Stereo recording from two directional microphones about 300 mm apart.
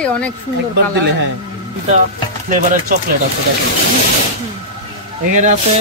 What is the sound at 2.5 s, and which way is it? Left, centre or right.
Speech, right.